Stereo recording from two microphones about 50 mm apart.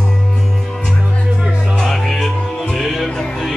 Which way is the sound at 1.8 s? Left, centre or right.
Centre.